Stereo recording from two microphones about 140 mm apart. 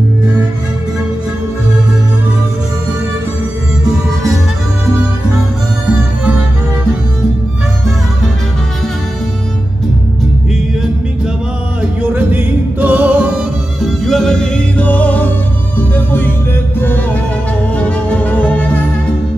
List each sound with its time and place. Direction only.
11.8 s music: 10° right (ahead or behind); by 18.8 s 10° left (ahead or behind)